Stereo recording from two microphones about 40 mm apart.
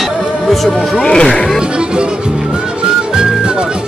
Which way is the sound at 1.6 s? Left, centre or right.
Right.